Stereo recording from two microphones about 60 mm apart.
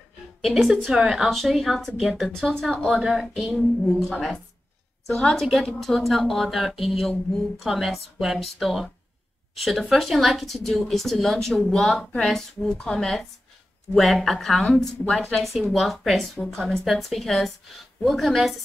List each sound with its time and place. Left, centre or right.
0.4 s speech: centre
2.0 s a woman's voice: centre